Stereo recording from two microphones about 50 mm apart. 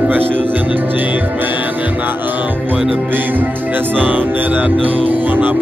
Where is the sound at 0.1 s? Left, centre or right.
Right.